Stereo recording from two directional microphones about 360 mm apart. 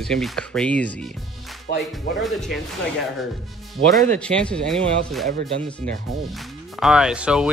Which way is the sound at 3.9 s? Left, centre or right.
Centre.